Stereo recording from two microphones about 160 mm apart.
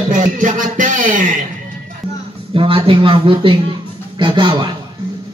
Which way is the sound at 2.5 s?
35° right (ahead or behind).